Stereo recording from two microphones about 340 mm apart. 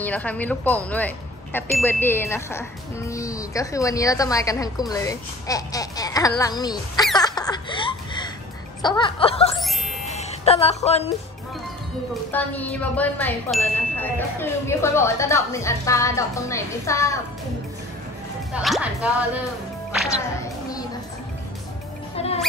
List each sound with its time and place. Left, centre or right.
0.0 s speech: centre
7.2 s laughter: centre
8.8 s speech: centre
12.3 s speech: centre
18.5 s speech: centre
20.1 s music: centre
22.1 s music: centre